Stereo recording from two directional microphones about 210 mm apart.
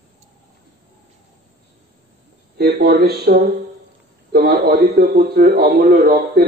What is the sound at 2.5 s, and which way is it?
A man's voice, 50° right (ahead or behind).